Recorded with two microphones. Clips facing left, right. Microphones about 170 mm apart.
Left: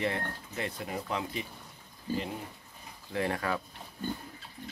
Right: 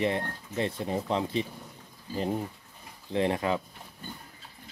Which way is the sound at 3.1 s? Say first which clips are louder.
Right 5 dB; 20° right (ahead or behind).